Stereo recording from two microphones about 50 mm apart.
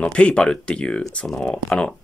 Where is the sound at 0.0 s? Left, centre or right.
Left.